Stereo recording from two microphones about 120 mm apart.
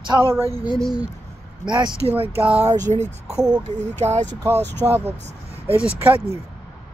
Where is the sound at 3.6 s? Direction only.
75° right (ahead or behind).